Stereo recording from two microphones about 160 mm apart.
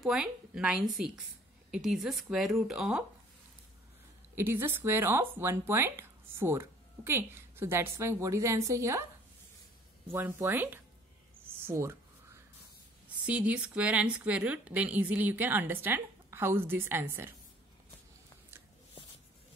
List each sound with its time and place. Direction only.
0.0 s a woman's voice: 5° right (ahead or behind)
4.4 s speech: 15° right (ahead or behind)
10.1 s speech: 15° right (ahead or behind)
11.4 s a sound: 15° right (ahead or behind)
13.2 s speech: 10° right (ahead or behind)